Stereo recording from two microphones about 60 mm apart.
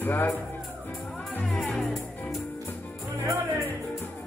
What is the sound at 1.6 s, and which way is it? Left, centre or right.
Music, centre.